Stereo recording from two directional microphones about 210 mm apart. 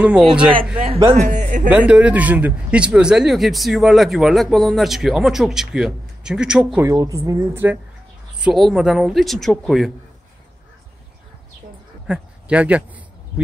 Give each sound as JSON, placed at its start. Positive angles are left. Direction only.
{"t": 0.0, "sound": "speech", "side_deg": -5}
{"t": 1.1, "sound": "speech", "side_deg": -35}
{"t": 1.7, "sound": "speech", "side_deg": -5}
{"t": 6.9, "sound": "a woman's voice", "side_deg": -15}
{"t": 12.1, "sound": "speech", "side_deg": -5}